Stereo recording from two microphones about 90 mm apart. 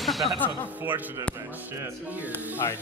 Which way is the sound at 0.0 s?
Centre (ahead or behind).